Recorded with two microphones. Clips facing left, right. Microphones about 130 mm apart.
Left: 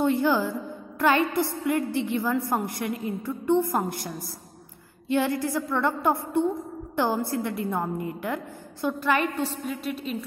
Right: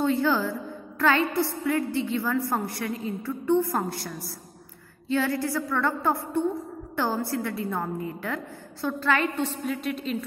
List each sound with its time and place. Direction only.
0.0 s a woman's voice: 15° left (ahead or behind)
5.1 s a woman's voice: 15° left (ahead or behind)